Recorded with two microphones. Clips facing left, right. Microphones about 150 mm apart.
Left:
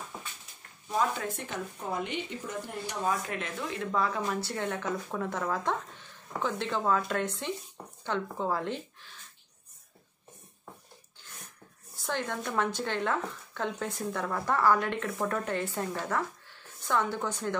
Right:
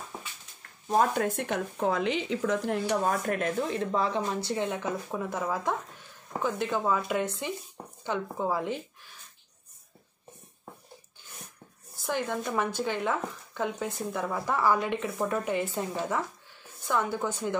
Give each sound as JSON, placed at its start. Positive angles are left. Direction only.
{"t": 0.8, "sound": "speech", "side_deg": -55}
{"t": 2.9, "sound": "speech", "side_deg": -50}
{"t": 12.0, "sound": "speech", "side_deg": -10}